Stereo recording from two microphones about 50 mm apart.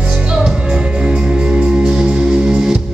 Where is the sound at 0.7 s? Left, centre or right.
Centre.